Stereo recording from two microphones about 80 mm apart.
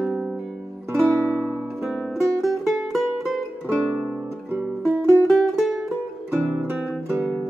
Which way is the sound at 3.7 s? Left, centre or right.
Centre.